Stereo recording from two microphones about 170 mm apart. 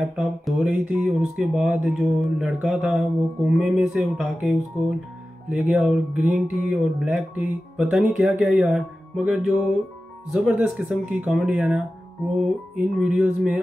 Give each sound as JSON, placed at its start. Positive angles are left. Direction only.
{"t": 0.0, "sound": "speech", "side_deg": 0}
{"t": 12.9, "sound": "speech", "side_deg": -5}